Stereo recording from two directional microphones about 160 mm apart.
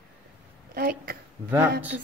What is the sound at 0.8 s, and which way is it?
Speech, 70° right (ahead or behind).